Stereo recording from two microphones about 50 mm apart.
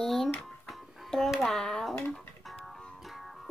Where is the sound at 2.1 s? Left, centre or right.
Centre.